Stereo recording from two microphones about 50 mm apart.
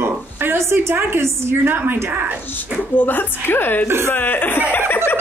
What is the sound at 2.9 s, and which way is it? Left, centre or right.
A woman's voice, left.